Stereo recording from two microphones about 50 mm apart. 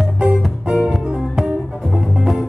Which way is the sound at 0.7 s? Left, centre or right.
Centre.